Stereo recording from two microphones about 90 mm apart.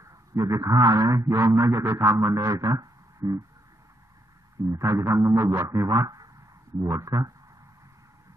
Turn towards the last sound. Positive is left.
turn(degrees=-40)  # may be behind; listen again after turning